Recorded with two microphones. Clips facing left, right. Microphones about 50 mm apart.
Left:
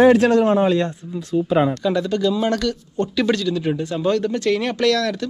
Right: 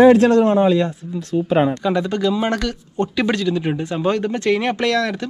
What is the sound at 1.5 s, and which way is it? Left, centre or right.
Speech, right.